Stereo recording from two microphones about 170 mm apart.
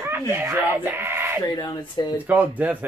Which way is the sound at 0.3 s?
15° right (ahead or behind).